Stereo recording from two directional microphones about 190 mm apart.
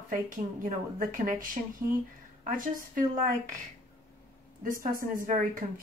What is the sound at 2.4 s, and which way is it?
Speech, 45° right (ahead or behind).